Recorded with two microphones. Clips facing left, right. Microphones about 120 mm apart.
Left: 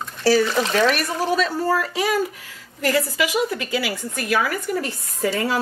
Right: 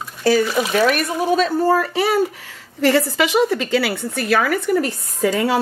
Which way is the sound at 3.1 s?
80° right.